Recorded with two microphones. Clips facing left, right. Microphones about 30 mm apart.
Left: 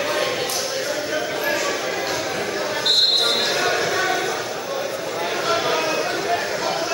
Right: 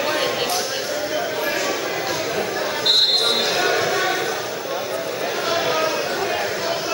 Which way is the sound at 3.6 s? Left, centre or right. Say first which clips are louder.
Right 1 dB; centre.